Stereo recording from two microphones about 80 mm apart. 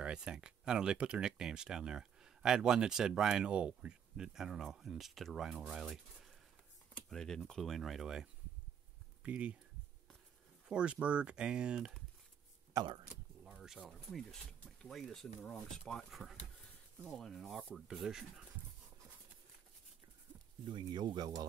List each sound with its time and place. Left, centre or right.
0.0 s speech: centre
7.1 s speech: centre
9.2 s speech: centre
10.7 s speech: centre
13.8 s speech: centre
20.6 s speech: right